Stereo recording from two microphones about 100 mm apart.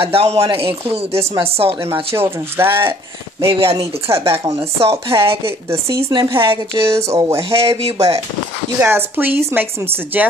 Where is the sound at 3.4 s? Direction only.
65° right (ahead or behind).